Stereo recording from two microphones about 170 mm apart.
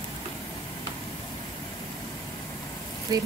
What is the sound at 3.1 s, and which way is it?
Speech, 25° right (ahead or behind).